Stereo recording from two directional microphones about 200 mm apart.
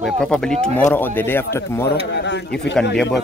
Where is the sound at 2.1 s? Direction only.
60° left (ahead or behind).